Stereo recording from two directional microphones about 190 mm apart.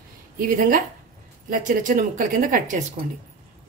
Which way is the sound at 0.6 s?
45° right (ahead or behind).